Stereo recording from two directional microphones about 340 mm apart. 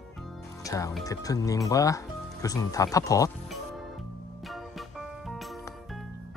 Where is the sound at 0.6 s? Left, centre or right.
Centre.